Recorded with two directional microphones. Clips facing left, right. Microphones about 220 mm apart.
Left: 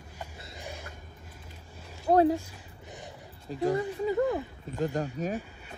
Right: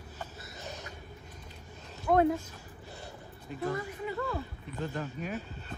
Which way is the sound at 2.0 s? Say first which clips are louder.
Left 3 dB; 35° left (ahead or behind).